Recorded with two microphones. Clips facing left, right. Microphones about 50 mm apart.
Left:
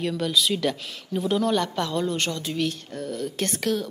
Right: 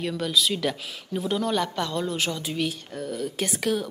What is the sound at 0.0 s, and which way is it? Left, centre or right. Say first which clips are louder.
Speech: left 1 dB; centre.